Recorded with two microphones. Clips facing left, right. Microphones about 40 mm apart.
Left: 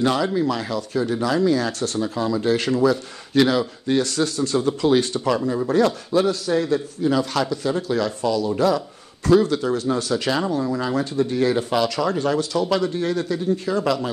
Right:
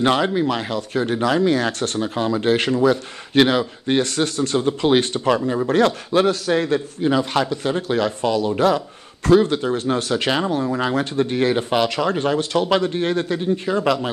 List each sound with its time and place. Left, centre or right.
0.0 s speech: right
5.7 s speech: right
7.1 s speech: right